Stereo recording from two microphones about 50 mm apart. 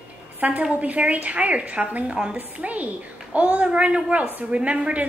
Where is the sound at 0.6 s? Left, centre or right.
Right.